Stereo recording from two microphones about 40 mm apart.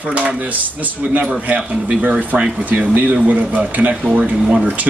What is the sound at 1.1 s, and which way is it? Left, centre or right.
A man's voice, right.